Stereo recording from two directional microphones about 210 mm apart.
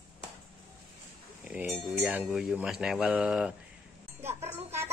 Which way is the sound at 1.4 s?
5° right (ahead or behind).